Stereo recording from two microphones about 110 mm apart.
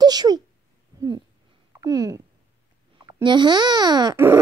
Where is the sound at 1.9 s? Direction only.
30° right (ahead or behind).